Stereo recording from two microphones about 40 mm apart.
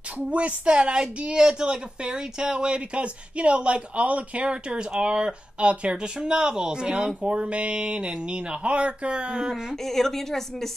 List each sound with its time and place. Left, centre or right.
0.3 s speech: right
4.5 s speech: right
6.1 s speech: centre
9.8 s a woman's voice: centre